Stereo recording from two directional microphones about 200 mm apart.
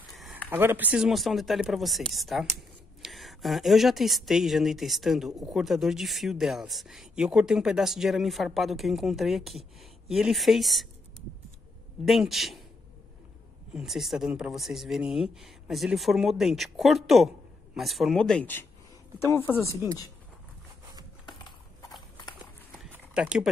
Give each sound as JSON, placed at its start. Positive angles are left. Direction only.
{"t": 0.1, "sound": "speech", "side_deg": 0}
{"t": 12.0, "sound": "speech", "side_deg": 0}
{"t": 13.7, "sound": "a woman's voice", "side_deg": 0}
{"t": 19.7, "sound": "speech", "side_deg": -15}
{"t": 21.3, "sound": "horse", "side_deg": 20}
{"t": 22.8, "sound": "a sound", "side_deg": -5}